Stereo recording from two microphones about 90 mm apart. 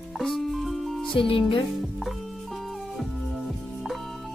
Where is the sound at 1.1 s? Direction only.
75° left (ahead or behind).